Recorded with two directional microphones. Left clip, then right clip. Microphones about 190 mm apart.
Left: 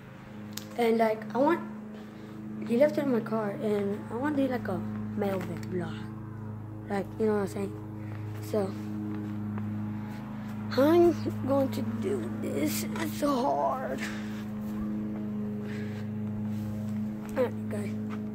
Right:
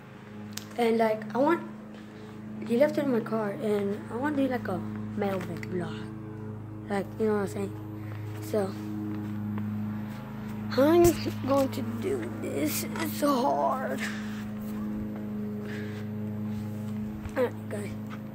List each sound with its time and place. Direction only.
0.7 s a woman's voice: centre (ahead or behind)
2.6 s a woman's voice: 5° right (ahead or behind)
10.7 s a woman's voice: centre (ahead or behind)
15.6 s vehicle: 15° right (ahead or behind)
17.3 s music: 10° right (ahead or behind)